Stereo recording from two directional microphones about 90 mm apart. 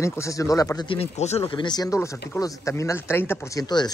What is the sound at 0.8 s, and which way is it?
Speech, 80° left.